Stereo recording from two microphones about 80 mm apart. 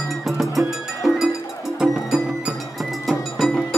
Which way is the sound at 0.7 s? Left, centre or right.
Centre.